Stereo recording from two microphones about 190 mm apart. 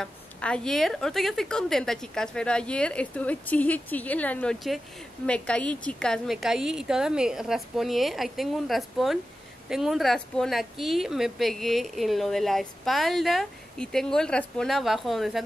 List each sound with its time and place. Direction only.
0.0 s a woman's voice: 5° left (ahead or behind)